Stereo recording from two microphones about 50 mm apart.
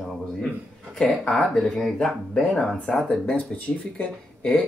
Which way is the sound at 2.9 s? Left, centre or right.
Centre.